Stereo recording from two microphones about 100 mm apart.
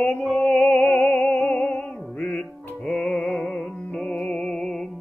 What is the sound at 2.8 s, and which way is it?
Music, 20° left (ahead or behind).